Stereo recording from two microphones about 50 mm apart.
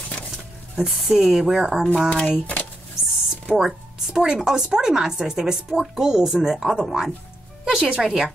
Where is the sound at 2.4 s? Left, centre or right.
Left.